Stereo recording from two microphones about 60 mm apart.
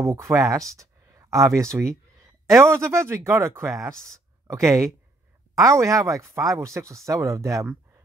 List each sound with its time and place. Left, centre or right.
0.0 s speech: right